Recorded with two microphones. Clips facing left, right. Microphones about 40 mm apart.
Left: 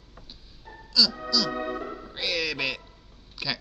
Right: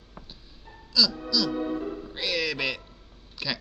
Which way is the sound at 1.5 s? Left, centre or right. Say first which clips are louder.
Right 1 dB; left.